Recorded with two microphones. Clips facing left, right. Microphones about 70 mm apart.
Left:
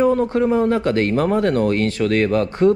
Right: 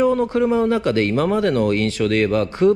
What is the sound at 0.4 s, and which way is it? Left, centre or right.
Speech, left.